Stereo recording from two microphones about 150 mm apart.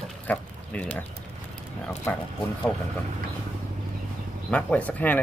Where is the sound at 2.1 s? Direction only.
15° left (ahead or behind).